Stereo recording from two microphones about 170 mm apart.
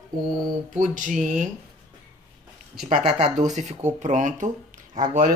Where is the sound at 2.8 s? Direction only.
45° right (ahead or behind).